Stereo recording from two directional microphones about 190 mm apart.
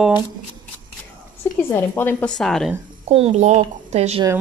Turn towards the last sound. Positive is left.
turn(degrees=-35)  # may be behind; listen again after turning